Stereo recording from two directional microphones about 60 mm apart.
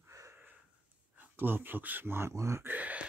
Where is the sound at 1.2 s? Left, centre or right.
Right.